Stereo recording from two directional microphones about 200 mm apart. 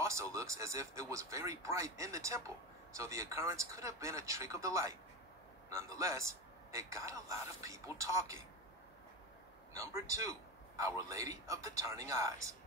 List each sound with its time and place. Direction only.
0.0 s a man's voice: 15° right (ahead or behind)
9.8 s a man's voice: 15° right (ahead or behind)